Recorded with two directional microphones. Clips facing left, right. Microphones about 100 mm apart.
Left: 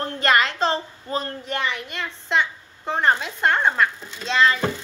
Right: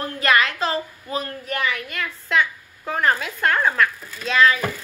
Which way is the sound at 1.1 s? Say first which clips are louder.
Even; 30° left (ahead or behind).